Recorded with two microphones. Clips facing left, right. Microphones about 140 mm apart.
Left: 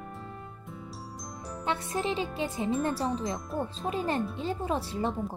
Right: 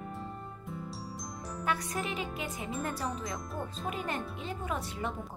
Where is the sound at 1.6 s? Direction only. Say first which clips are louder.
Left 4 dB; 30° left (ahead or behind).